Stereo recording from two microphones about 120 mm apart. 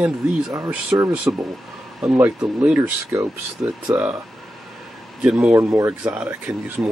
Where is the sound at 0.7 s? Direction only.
15° right (ahead or behind).